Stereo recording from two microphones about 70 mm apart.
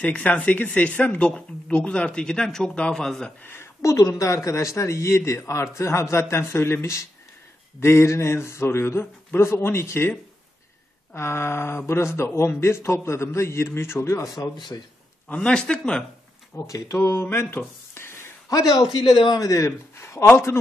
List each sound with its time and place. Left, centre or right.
0.0 s speech: left
3.4 s a sound: left
3.9 s a man's voice: left
11.1 s speech: left
14.7 s a man's voice: left
15.2 s speech: centre
16.5 s speech: left
18.5 s a man's voice: left